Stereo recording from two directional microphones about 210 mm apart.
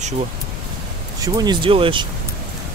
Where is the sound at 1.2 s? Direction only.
20° right (ahead or behind).